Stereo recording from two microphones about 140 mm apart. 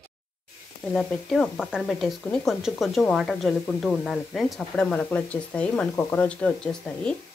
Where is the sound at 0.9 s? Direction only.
5° left (ahead or behind).